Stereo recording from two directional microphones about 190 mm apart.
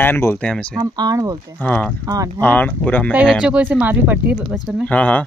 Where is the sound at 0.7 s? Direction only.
20° right (ahead or behind).